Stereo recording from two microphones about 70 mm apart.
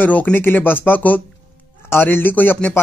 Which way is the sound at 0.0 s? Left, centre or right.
Left.